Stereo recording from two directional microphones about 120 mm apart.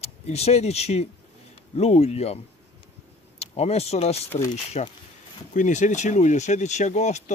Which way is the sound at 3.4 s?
60° left (ahead or behind).